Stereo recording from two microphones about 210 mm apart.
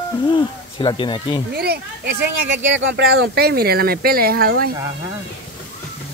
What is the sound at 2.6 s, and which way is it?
Speech, 60° right (ahead or behind).